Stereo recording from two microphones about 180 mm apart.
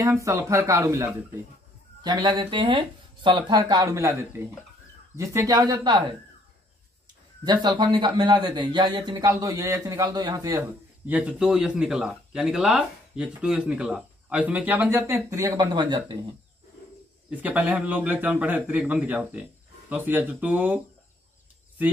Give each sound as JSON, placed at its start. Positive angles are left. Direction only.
{"t": 0.0, "sound": "a man's voice", "side_deg": -15}
{"t": 2.0, "sound": "a man's voice", "side_deg": -25}
{"t": 7.4, "sound": "a man's voice", "side_deg": -25}
{"t": 10.6, "sound": "speech", "side_deg": -10}
{"t": 17.3, "sound": "a man's voice", "side_deg": -10}